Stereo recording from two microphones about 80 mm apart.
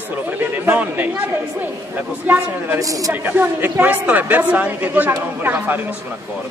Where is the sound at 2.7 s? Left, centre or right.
Right.